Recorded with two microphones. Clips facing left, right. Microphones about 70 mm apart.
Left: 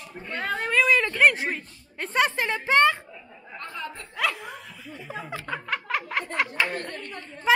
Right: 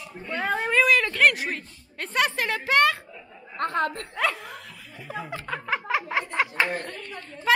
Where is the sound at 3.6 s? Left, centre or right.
Right.